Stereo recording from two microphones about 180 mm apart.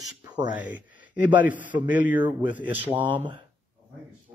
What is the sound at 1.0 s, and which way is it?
A man's voice, 10° right (ahead or behind).